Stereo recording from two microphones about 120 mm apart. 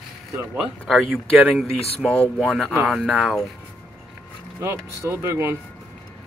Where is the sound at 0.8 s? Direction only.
Centre (ahead or behind).